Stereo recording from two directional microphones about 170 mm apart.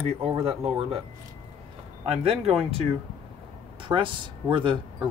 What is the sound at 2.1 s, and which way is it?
Speech, 35° right (ahead or behind).